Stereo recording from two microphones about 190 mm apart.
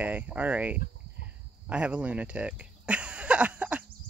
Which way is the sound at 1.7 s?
5° right (ahead or behind).